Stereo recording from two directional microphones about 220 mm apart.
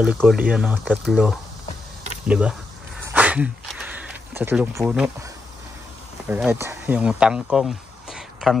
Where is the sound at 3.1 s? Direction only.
5° right (ahead or behind).